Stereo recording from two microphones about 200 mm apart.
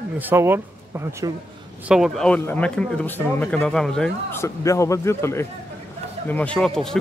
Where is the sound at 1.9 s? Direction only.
Centre (ahead or behind).